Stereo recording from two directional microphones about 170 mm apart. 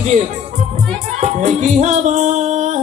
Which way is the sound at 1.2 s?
45° right (ahead or behind).